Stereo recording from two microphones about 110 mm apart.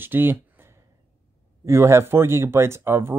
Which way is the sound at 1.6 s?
25° right (ahead or behind).